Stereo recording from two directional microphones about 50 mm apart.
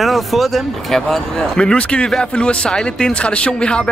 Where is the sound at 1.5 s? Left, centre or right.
Left.